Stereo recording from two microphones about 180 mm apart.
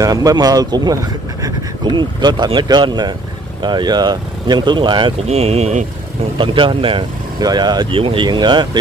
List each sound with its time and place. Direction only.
0.0 s speech: 20° right (ahead or behind); by 5.9 s 40° right (ahead or behind)
6.3 s speech: 30° right (ahead or behind)